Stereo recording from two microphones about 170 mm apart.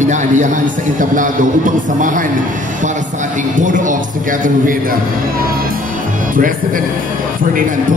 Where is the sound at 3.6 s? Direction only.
50° right (ahead or behind).